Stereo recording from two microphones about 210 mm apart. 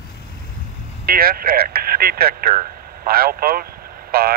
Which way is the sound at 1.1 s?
45° right (ahead or behind).